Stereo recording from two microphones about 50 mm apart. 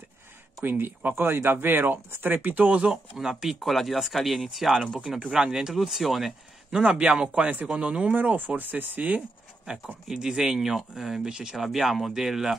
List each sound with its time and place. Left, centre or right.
0.7 s speech: right
2.5 s a man's voice: right
3.2 s speech: centre
6.7 s a man's voice: centre
8.1 s speech: right
10.1 s speech: centre